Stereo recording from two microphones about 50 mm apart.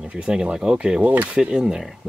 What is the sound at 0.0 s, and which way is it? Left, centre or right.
Speech, centre.